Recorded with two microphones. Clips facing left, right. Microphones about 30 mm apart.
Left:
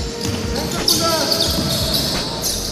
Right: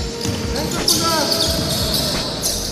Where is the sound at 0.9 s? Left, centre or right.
Centre.